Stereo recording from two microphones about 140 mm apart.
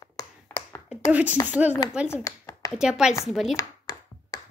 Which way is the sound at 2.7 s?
5° right (ahead or behind).